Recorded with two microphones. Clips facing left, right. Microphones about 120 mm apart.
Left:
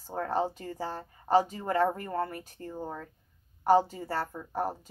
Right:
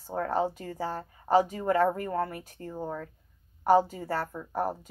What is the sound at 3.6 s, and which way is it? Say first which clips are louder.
A woman's voice: right 1 dB; 30° left (ahead or behind).